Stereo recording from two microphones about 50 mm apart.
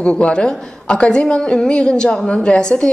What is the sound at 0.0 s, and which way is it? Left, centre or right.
A woman's voice, left.